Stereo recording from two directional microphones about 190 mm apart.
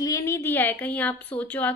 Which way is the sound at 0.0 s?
15° left (ahead or behind).